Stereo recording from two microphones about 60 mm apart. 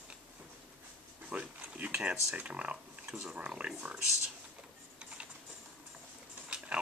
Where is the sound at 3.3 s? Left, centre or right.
Right.